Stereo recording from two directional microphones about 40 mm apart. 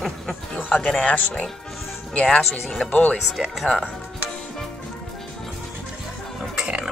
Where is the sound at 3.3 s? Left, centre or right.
Centre.